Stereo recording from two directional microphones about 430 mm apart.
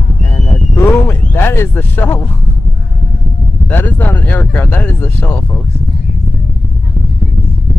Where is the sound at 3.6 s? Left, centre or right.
Centre.